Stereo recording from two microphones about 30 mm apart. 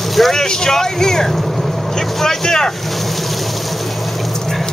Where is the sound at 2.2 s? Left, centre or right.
Centre.